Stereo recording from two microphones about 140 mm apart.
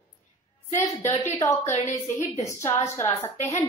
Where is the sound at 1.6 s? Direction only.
50° left (ahead or behind).